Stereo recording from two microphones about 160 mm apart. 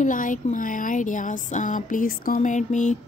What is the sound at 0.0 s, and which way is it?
Speech, 55° left (ahead or behind).